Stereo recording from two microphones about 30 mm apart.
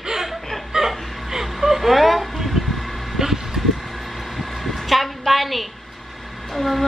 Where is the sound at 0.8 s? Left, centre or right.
Centre.